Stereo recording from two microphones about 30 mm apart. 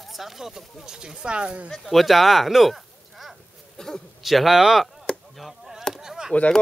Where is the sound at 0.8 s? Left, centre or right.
Right.